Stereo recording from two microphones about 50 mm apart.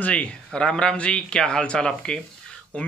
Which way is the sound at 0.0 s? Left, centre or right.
Left.